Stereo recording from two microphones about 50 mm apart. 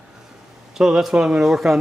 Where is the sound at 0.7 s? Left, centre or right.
Centre.